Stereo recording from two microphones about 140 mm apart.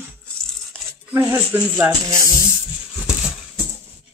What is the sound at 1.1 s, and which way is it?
A child's voice, 15° right (ahead or behind).